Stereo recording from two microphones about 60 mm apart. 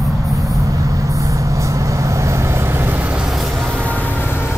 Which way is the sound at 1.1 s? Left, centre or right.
Right.